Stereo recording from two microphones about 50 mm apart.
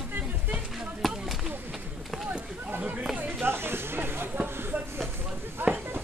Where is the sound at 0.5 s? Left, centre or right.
Centre.